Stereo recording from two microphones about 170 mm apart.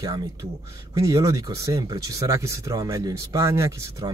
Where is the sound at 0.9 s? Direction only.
20° right (ahead or behind).